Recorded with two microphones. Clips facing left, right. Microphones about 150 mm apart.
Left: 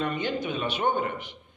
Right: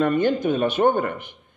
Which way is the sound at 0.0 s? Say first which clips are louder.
Right 9 dB; 50° right (ahead or behind).